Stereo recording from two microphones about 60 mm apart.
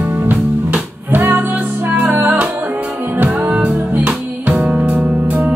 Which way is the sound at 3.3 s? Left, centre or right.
Right.